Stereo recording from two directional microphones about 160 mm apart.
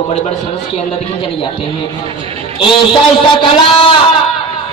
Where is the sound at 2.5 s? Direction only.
30° left (ahead or behind).